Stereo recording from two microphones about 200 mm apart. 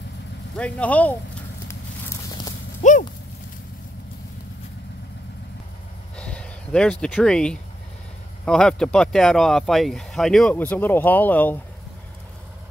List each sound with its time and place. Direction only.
0.6 s speech: 5° left (ahead or behind)
2.2 s horse: 20° left (ahead or behind)
2.8 s horse: 40° left (ahead or behind)
6.1 s a sound: 5° left (ahead or behind)
8.5 s speech: 5° left (ahead or behind)